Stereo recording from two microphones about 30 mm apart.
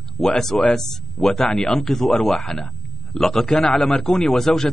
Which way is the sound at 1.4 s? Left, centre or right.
Left.